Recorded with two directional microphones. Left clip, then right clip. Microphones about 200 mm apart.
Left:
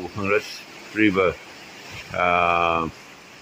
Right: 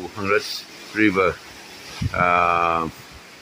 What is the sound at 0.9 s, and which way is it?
Speech, 5° right (ahead or behind).